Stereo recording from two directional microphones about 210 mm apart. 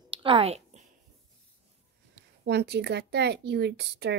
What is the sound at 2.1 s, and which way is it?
A woman's voice, 50° right (ahead or behind).